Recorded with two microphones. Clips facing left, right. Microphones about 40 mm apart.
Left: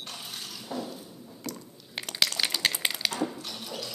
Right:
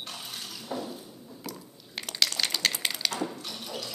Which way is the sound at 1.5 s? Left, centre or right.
Centre.